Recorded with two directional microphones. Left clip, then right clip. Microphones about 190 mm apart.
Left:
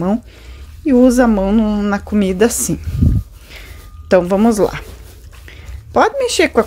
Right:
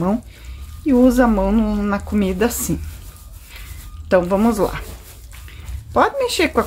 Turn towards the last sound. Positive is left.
turn(degrees=30)  # may be behind; listen again after turning